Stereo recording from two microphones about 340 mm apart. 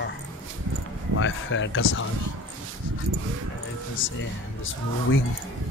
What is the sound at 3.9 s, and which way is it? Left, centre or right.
Speech, left.